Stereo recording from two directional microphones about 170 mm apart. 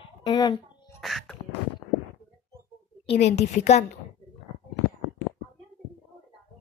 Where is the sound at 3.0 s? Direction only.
40° left (ahead or behind).